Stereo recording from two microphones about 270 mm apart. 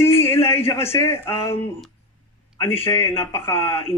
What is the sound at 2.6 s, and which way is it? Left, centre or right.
Speech, centre.